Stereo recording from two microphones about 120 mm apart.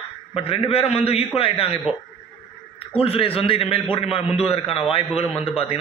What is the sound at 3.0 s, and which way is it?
A man's voice, 50° left (ahead or behind).